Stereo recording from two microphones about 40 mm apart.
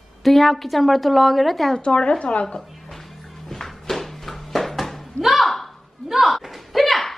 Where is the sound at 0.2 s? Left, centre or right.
Centre.